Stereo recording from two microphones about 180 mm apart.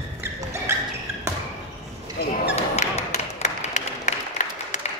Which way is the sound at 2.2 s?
65° left (ahead or behind).